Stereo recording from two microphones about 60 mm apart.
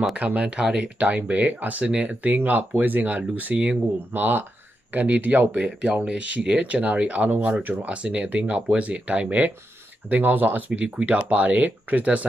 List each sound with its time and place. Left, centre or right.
0.1 s speech: right